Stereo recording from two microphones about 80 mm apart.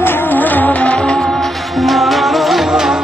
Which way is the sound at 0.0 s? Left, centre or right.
Left.